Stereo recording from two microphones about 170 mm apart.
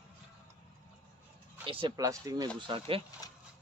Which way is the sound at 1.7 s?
30° right (ahead or behind).